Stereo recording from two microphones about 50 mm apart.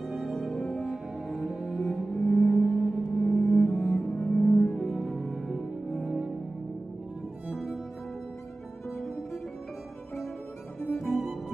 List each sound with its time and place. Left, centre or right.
0.0 s music: centre
1.9 s cello: centre
2.2 s cello: left
2.5 s music: centre
3.3 s cello: left
4.4 s music: left
4.6 s music: centre
6.0 s music: centre
7.5 s music: centre
11.0 s music: centre